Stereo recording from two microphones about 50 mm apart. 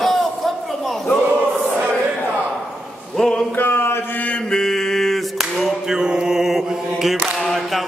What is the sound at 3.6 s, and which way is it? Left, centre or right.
Mantra, left.